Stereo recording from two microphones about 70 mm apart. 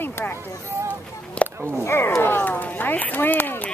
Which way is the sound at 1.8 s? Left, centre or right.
Left.